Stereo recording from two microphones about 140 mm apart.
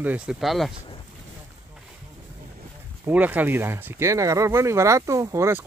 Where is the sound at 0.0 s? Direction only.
10° right (ahead or behind).